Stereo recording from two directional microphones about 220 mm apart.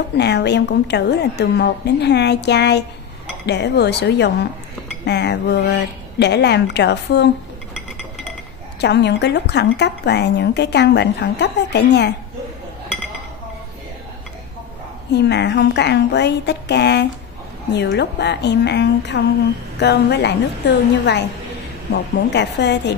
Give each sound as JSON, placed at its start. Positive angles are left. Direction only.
{"t": 0.2, "sound": "speech", "side_deg": 50}
{"t": 8.8, "sound": "speech", "side_deg": 50}
{"t": 15.1, "sound": "speech", "side_deg": 50}